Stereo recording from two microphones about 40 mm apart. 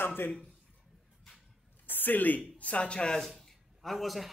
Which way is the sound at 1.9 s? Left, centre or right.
Left.